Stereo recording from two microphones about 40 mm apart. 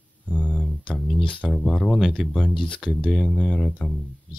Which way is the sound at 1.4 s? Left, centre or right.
Centre.